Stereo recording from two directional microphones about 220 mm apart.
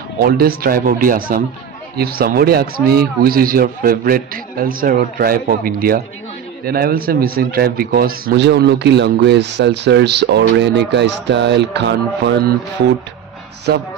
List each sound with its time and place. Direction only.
0.2 s speech: 45° right (ahead or behind)
13.7 s speech: 45° right (ahead or behind)